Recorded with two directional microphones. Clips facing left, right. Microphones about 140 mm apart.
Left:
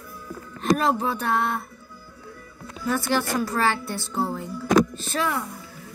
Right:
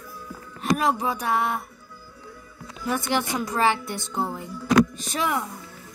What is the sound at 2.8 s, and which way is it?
A woman's voice, 20° right (ahead or behind).